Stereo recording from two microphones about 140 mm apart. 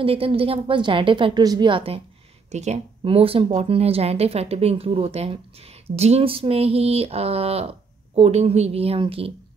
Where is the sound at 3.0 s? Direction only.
40° right (ahead or behind).